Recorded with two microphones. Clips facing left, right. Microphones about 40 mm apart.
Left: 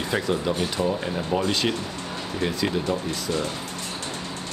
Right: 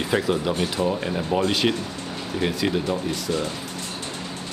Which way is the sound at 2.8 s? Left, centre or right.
Centre.